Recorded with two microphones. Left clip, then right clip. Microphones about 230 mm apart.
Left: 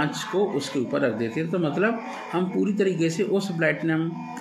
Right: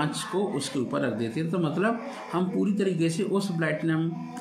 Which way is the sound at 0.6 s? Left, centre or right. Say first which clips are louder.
Left 4 dB; centre.